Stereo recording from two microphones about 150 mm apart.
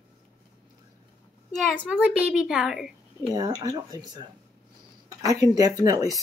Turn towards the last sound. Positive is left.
turn(degrees=-25)  # may be behind; listen again after turning